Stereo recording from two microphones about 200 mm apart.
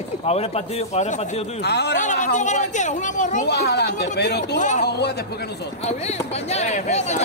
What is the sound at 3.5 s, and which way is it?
Speech, 55° left (ahead or behind).